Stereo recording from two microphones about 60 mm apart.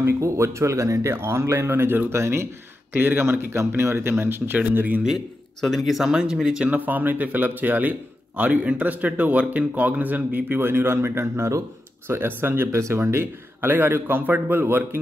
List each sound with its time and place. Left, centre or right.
0.2 s speech: right
1.1 s speech: right
2.9 s speech: right
4.6 s speech: right
5.6 s speech: centre
6.7 s speech: right
12.1 s a man's voice: right
12.7 s a man's voice: right